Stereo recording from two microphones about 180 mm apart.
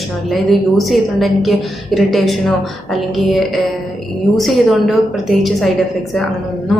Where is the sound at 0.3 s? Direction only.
Centre (ahead or behind).